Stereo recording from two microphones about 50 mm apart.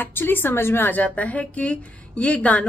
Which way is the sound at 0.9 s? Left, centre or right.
Left.